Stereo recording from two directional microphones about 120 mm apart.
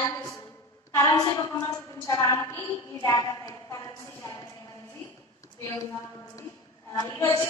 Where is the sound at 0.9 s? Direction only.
25° left (ahead or behind).